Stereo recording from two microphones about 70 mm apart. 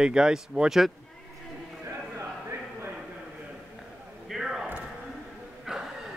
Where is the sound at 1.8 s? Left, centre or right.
Right.